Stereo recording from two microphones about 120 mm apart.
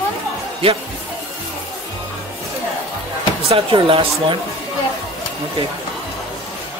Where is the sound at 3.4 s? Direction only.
45° right (ahead or behind).